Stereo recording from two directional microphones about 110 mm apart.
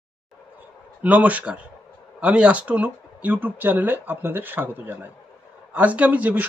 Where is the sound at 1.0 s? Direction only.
15° right (ahead or behind).